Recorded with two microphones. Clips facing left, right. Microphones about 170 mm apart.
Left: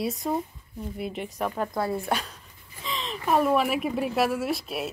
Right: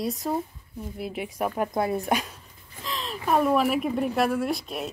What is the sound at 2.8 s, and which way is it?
A woman's voice, centre (ahead or behind).